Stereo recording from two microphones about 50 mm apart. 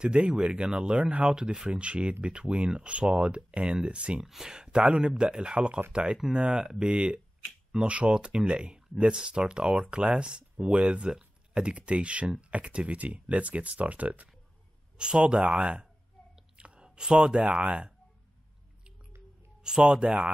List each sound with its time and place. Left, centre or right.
0.0 s speech: right
4.3 s speech: centre; by 14.3 s right
15.0 s speech: centre
19.6 s speech: centre